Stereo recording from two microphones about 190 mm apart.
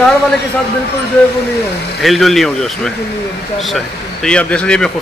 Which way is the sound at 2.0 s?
Centre (ahead or behind).